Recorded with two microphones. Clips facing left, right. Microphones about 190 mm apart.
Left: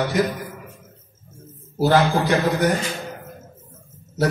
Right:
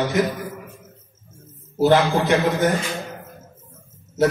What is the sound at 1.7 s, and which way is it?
Speech, 20° right (ahead or behind).